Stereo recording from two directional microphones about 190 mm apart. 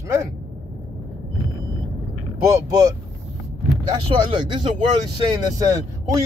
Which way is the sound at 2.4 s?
15° right (ahead or behind).